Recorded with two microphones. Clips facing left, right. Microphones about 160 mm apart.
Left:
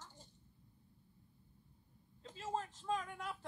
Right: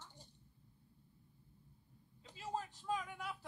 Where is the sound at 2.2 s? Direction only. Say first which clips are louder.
Left 2 dB; 5° right (ahead or behind).